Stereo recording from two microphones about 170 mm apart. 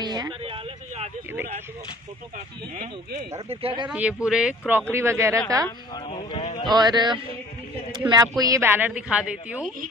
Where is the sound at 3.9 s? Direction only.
5° right (ahead or behind).